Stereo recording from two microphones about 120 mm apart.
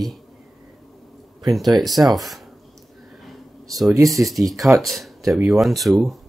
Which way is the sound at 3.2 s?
Centre (ahead or behind).